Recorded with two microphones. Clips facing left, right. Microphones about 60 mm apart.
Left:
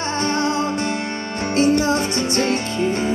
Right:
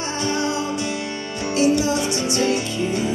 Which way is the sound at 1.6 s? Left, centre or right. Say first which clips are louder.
Left 2 dB; left.